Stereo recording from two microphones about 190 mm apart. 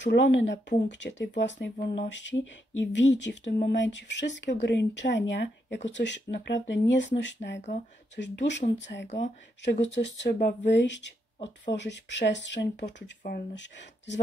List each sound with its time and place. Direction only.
0.0 s speech: 65° left (ahead or behind)
7.4 s speech: 45° left (ahead or behind)
8.2 s speech: 65° left (ahead or behind)
13.2 s speech: 45° left (ahead or behind)
13.6 s speech: 70° left (ahead or behind)